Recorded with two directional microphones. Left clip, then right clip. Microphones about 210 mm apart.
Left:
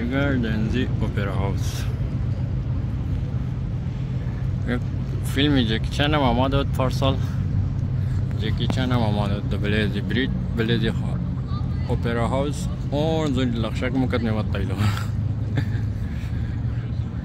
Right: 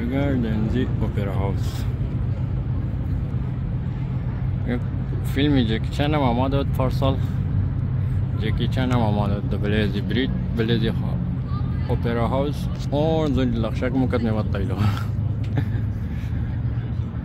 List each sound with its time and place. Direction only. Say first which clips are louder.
0.1 s speech: left 1 dB; 10° right (ahead or behind)
5.3 s speech: even; 5° right (ahead or behind)
8.5 s speech: right 1 dB; 5° right (ahead or behind)